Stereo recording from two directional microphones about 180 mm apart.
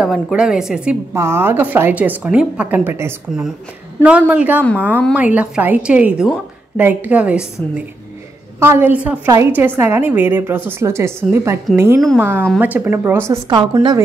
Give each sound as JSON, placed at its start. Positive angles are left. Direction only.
{"t": 0.0, "sound": "a woman's voice", "side_deg": -5}
{"t": 8.5, "sound": "a woman's voice", "side_deg": -10}
{"t": 13.5, "sound": "a woman's voice", "side_deg": -25}